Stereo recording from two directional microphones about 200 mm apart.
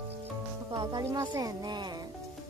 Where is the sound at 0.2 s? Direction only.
25° right (ahead or behind).